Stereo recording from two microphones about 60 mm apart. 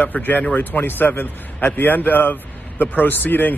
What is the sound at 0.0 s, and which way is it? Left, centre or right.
A man's voice, left.